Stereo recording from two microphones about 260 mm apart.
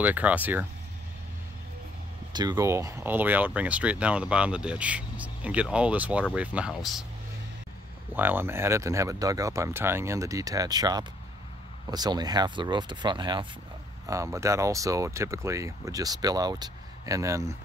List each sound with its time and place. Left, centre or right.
0.0 s speech: centre
2.3 s speech: centre
8.1 s speech: centre